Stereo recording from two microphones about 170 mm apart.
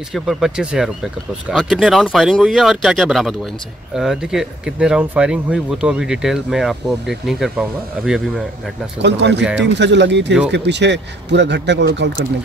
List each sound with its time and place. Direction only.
0.1 s speech: centre (ahead or behind)
9.0 s speech: 90° right